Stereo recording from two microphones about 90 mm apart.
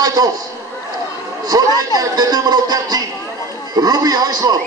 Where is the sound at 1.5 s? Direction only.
40° right (ahead or behind).